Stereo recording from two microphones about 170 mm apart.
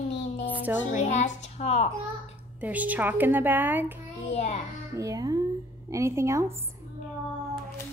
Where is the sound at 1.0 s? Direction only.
40° left (ahead or behind).